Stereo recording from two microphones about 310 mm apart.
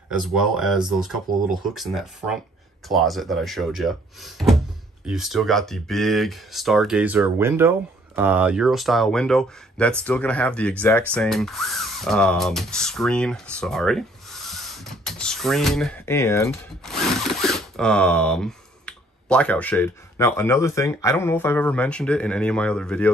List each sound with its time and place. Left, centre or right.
0.1 s speech: centre